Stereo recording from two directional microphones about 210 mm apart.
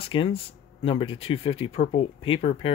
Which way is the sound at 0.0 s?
25° left (ahead or behind).